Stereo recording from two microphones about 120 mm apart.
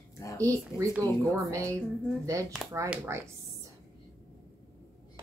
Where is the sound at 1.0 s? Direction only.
25° right (ahead or behind).